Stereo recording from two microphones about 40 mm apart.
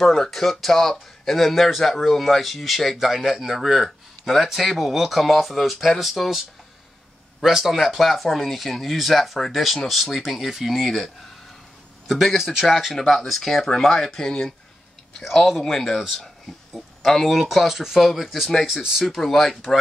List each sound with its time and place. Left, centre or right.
0.0 s speech: centre
12.1 s speech: centre
12.4 s speech: centre
13.1 s speech: centre
17.0 s speech: centre
17.3 s speech: centre
18.7 s speech: centre
19.0 s speech: centre